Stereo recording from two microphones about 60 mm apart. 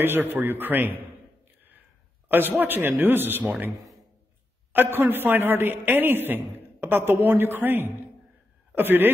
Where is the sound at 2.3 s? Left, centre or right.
Right.